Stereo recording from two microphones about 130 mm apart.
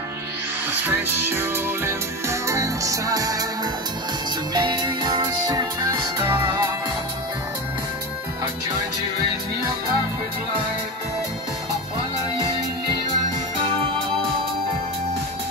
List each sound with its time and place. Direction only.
0.7 s music: 15° right (ahead or behind)
4.6 s music: 30° right (ahead or behind)